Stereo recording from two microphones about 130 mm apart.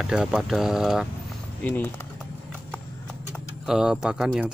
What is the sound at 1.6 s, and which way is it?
Speech, 15° left (ahead or behind).